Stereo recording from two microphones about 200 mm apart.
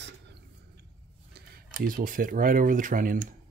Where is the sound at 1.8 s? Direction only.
45° right (ahead or behind).